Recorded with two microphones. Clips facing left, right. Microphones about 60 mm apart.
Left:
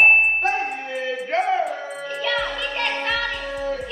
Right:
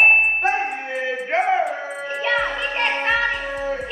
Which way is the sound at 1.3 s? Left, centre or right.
Right.